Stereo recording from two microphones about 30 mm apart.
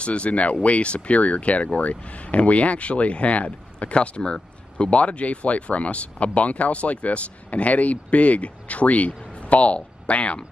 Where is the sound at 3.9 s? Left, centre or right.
Left.